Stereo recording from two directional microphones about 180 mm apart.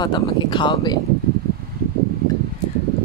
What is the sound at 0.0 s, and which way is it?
Speech, 25° left (ahead or behind).